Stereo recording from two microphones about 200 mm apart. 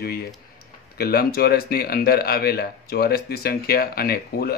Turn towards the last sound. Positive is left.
turn(degrees=50)  # may be behind; listen again after turning